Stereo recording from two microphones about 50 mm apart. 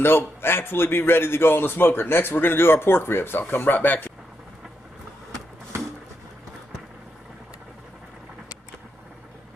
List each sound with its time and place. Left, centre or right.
0.0 s speech: left
3.4 s speech: left